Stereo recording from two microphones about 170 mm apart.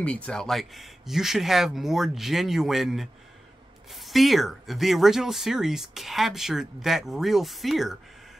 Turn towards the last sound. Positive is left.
turn(degrees=0)  # may be behind; listen again after turning